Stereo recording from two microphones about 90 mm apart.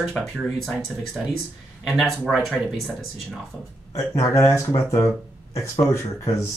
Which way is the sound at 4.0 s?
35° left (ahead or behind).